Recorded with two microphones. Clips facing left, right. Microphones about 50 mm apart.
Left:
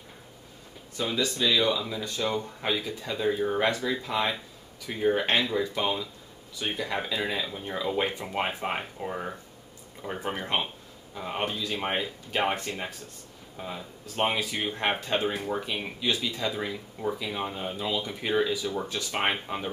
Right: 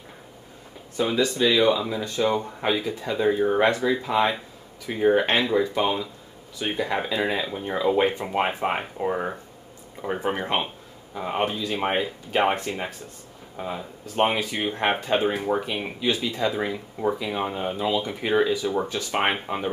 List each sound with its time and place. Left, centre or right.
0.9 s speech: right